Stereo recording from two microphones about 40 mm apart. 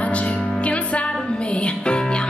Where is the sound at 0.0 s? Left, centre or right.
Left.